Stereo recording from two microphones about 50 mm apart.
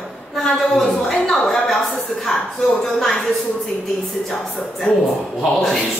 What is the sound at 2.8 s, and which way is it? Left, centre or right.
Speech, centre.